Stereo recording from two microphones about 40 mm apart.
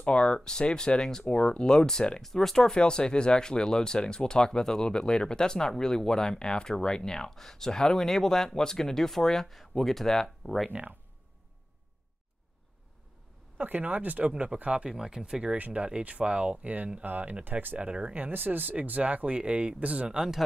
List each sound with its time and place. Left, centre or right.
0.0 s speech: left
2.2 s speech: centre
10.7 s speech: right
13.6 s speech: right
14.9 s speech: centre
15.5 s speech: right
17.5 s speech: right
17.7 s speech: right
18.1 s speech: right
20.1 s speech: centre